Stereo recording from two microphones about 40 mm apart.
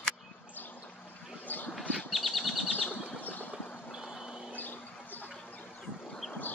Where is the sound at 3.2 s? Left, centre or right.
Left.